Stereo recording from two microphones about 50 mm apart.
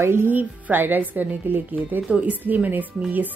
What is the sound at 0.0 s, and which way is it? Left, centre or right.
Speech, right.